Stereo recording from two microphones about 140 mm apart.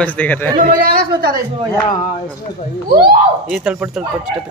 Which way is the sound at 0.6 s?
90° right.